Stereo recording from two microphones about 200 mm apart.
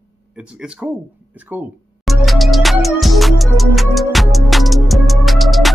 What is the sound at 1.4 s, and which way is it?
Music, 10° right (ahead or behind).